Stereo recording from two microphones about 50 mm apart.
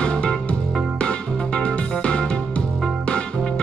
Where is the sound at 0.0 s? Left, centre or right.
Centre.